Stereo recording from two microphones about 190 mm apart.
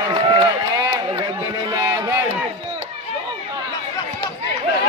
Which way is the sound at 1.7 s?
15° right (ahead or behind).